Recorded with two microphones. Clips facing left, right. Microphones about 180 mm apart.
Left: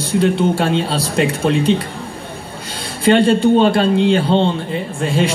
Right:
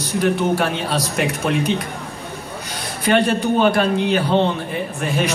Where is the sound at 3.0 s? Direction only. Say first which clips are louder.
Left 5 dB; 25° left (ahead or behind).